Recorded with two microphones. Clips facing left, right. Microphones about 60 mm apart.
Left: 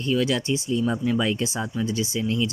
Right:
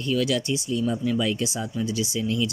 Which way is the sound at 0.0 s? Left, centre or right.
Left.